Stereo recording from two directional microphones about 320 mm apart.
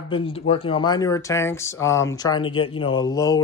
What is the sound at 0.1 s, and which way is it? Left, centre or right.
Speech, centre.